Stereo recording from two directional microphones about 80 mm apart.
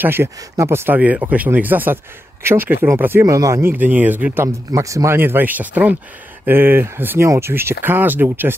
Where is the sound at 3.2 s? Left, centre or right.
Right.